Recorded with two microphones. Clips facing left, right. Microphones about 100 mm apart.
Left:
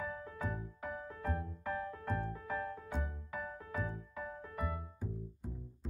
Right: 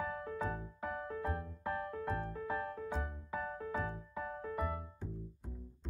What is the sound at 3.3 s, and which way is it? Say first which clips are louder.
Music: right 3 dB; 40° right (ahead or behind).